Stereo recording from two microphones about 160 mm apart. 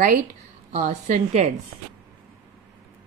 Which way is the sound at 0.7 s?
45° right (ahead or behind).